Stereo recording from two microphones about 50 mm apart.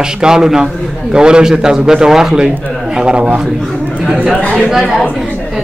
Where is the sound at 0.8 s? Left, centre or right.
Centre.